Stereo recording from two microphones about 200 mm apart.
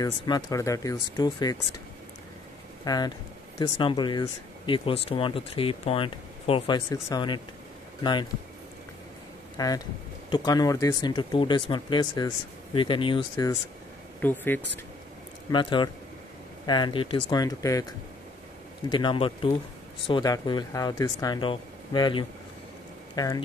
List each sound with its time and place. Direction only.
0.0 s speech: 15° left (ahead or behind)
2.8 s speech: 20° left (ahead or behind)
9.6 s speech: 20° left (ahead or behind)
14.2 s speech: 10° left (ahead or behind)
15.5 s speech: 25° left (ahead or behind)
18.9 s speech: 25° left (ahead or behind)